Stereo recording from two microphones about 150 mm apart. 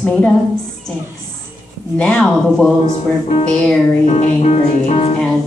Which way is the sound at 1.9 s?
5° left (ahead or behind).